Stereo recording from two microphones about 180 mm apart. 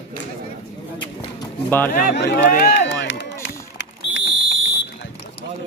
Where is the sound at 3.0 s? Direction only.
90° left.